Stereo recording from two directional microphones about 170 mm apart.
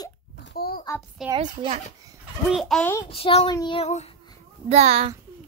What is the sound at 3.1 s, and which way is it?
Speech, 35° left (ahead or behind).